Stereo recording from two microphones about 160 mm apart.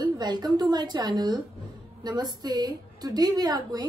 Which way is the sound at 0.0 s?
25° right (ahead or behind).